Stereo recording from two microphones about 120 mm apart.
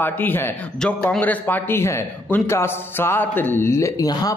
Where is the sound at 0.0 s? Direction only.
15° left (ahead or behind).